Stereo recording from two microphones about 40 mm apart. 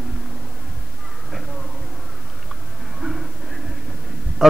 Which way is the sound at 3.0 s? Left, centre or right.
Right.